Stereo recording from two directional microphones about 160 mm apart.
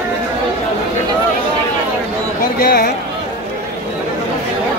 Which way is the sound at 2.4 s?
70° left (ahead or behind).